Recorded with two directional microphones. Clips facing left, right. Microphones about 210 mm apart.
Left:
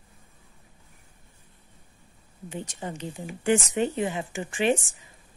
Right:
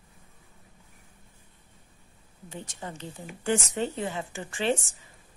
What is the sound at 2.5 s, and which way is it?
Speech, 15° left (ahead or behind).